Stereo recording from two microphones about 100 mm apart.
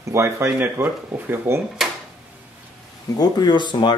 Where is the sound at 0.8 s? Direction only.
20° right (ahead or behind).